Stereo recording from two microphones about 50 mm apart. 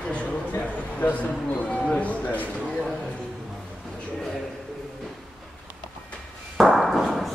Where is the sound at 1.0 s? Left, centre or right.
Left.